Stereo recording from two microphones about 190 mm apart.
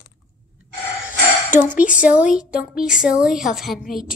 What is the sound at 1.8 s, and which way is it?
Speech, 5° right (ahead or behind).